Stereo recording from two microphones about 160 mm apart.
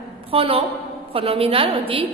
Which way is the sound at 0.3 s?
35° right (ahead or behind).